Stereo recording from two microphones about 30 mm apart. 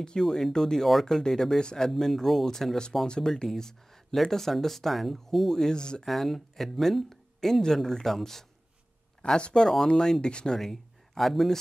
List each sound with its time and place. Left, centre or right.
0.2 s speech: centre
1.6 s speech: left
2.0 s speech: centre
4.1 s speech: centre
5.6 s speech: left
6.0 s speech: centre
9.2 s speech: left
9.8 s speech: left
10.5 s speech: centre